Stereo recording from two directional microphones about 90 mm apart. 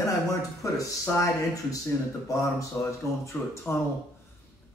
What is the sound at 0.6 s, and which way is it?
Speech, 35° left (ahead or behind).